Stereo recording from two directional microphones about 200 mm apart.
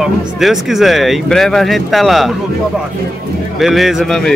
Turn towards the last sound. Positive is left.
turn(degrees=0)  # may be behind; listen again after turning